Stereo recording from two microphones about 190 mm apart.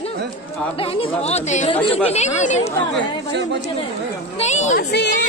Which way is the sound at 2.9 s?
65° right (ahead or behind).